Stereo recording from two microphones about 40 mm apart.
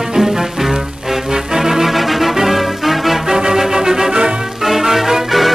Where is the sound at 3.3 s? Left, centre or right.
Centre.